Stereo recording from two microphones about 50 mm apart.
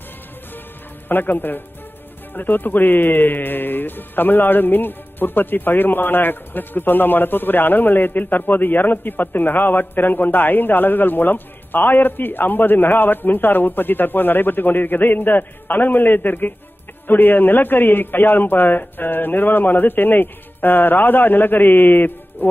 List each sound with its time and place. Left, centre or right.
1.0 s speech: left